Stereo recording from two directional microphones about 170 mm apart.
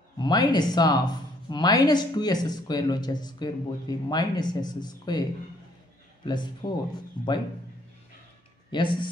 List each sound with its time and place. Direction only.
0.2 s speech: 25° left (ahead or behind)
8.6 s speech: 25° left (ahead or behind)